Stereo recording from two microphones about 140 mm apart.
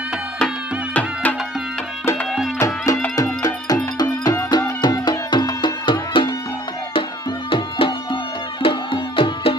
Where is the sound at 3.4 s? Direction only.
30° left (ahead or behind).